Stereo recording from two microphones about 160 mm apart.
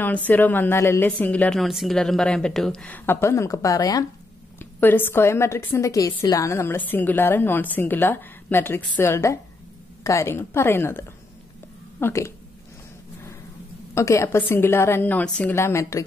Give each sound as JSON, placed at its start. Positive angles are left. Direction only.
{"t": 0.0, "sound": "a woman's voice", "side_deg": 10}
{"t": 13.9, "sound": "a woman's voice", "side_deg": 20}